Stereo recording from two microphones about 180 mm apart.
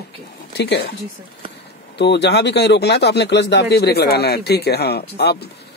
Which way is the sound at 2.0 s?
70° left (ahead or behind).